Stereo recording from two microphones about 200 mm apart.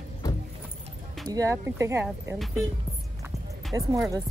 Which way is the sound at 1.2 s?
15° right (ahead or behind).